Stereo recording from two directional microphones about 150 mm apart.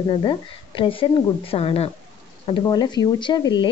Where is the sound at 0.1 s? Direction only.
30° left (ahead or behind).